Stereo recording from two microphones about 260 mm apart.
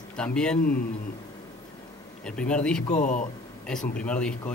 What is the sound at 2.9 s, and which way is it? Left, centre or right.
Speech, left.